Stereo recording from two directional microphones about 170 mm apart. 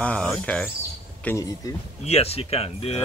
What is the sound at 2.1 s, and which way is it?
Speech, 35° left (ahead or behind).